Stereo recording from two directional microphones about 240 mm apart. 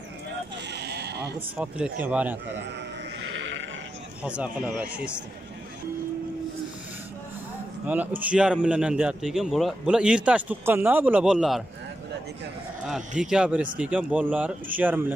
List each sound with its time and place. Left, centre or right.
0.7 s sheep: right
1.6 s speech: centre
3.3 s sheep: right
4.2 s a man's voice: centre
7.8 s a man's voice: centre
13.2 s a man's voice: centre